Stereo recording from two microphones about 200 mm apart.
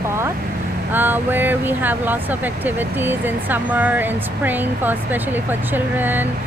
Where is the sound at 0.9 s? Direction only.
10° right (ahead or behind).